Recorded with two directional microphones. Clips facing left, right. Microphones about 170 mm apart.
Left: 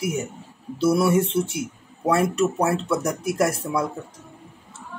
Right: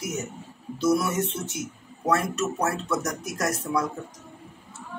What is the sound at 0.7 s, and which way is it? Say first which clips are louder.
Speech: left 4 dB; 30° left (ahead or behind).